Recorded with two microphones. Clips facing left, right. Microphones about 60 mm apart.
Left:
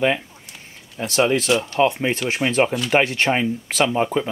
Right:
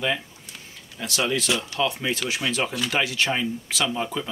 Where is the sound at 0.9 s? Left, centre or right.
Left.